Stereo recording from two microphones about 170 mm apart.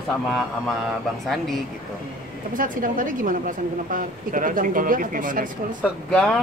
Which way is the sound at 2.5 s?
50° right (ahead or behind).